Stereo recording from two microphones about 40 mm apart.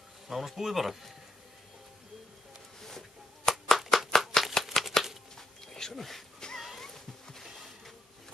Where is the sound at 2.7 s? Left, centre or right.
Centre.